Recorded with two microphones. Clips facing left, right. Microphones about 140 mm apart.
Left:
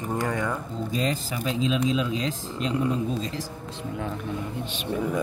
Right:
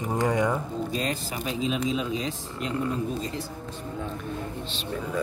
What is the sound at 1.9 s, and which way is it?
Speech, 90° left.